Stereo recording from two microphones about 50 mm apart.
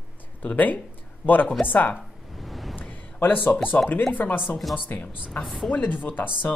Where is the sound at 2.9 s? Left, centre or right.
Left.